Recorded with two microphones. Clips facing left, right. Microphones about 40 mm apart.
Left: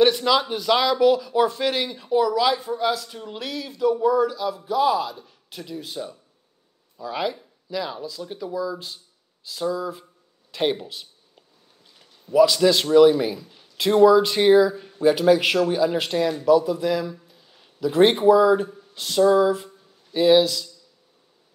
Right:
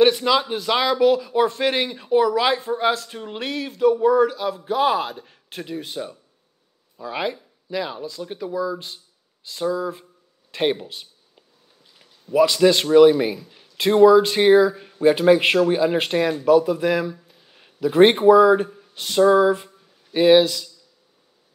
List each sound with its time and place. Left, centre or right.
0.0 s a man's voice: centre
1.5 s a man's voice: right